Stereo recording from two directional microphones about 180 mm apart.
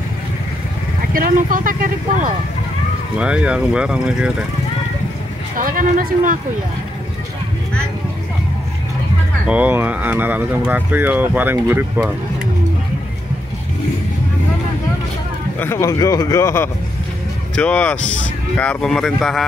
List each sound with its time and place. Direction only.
1.1 s speech: 50° right (ahead or behind)
3.2 s speech: 5° right (ahead or behind)
5.6 s speech: 50° right (ahead or behind)
9.5 s speech: 10° right (ahead or behind)
15.6 s speech: 15° left (ahead or behind)